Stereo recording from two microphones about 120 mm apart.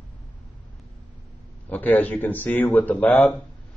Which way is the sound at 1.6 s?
15° left (ahead or behind).